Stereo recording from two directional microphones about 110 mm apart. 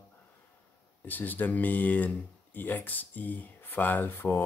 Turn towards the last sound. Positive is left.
turn(degrees=20)  # may be behind; listen again after turning